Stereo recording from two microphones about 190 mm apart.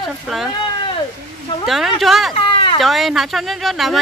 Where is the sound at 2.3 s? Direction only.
25° left (ahead or behind).